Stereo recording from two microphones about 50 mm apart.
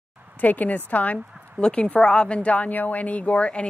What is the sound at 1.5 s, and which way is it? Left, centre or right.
A woman's voice, centre.